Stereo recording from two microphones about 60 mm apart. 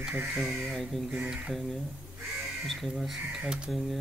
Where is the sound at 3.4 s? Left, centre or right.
Centre.